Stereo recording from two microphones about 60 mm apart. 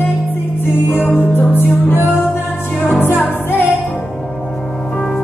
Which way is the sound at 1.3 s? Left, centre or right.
Left.